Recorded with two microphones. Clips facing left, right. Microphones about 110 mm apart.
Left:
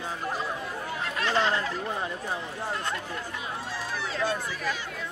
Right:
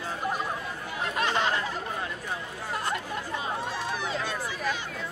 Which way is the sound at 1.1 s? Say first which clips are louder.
Left 1 dB; 20° right (ahead or behind).